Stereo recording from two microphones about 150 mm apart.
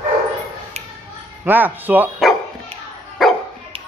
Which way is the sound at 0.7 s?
45° right (ahead or behind).